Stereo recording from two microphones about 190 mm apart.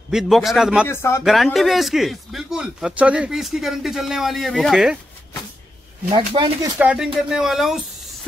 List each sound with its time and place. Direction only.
0.1 s speech: centre (ahead or behind)
0.8 s speech: 15° left (ahead or behind)
1.2 s speech: centre (ahead or behind)
6.1 s speech: 20° right (ahead or behind)
6.8 s speech: 5° right (ahead or behind)